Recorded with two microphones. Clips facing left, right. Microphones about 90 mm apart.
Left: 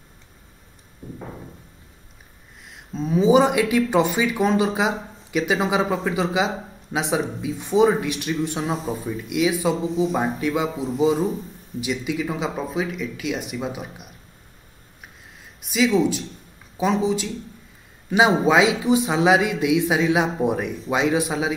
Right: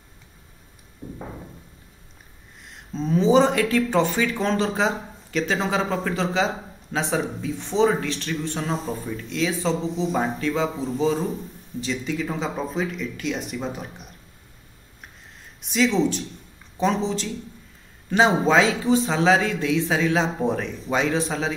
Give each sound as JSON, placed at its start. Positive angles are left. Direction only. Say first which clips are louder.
{"t": 2.7, "sound": "speech", "louder": "even", "side_deg": 5}
{"t": 15.6, "sound": "speech", "louder": "left 2 dB", "side_deg": 5}